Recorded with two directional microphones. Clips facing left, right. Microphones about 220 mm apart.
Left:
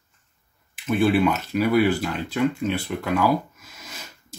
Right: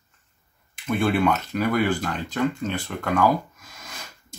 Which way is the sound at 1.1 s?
5° left (ahead or behind).